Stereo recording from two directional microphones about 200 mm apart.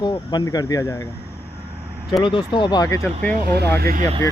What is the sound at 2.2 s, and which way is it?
Speech, 25° left (ahead or behind).